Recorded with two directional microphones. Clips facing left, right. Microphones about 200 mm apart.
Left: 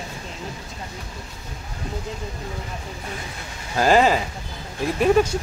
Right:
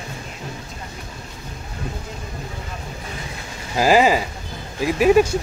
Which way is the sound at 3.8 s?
10° right (ahead or behind).